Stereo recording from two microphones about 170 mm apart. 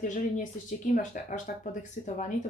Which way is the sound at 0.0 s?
50° left (ahead or behind).